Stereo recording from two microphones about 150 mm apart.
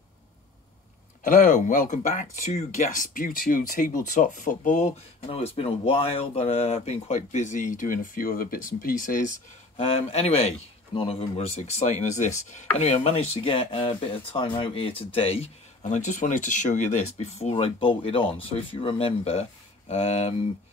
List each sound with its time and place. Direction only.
1.2 s speech: 65° left (ahead or behind)
9.8 s speech: 45° left (ahead or behind)